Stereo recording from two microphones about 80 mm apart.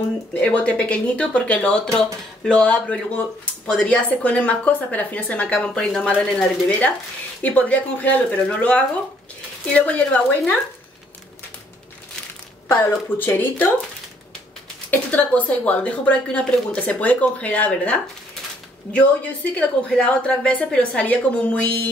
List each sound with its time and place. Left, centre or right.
0.3 s speech: centre
12.6 s speech: left
14.9 s speech: centre
19.9 s speech: centre